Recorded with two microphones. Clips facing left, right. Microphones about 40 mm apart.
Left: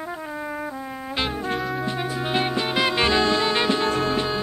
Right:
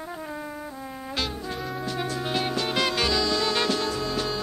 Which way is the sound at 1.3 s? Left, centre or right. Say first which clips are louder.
Left 7 dB; left.